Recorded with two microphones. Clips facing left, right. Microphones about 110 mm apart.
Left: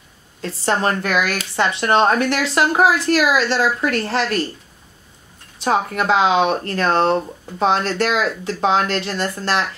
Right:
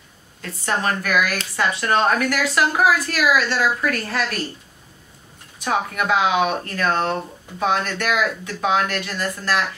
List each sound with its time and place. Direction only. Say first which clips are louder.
0.4 s speech: left 4 dB; 30° left (ahead or behind)
5.6 s speech: left 3 dB; 30° left (ahead or behind)